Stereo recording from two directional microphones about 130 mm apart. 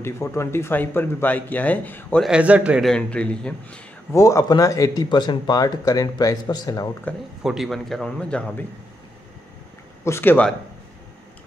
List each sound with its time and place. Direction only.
0.0 s speech: 20° left (ahead or behind)
2.2 s a man's voice: 10° right (ahead or behind)
2.8 s speech: 5° left (ahead or behind)
4.1 s speech: 25° left (ahead or behind)
7.4 s a man's voice: centre (ahead or behind)
10.0 s speech: 20° left (ahead or behind)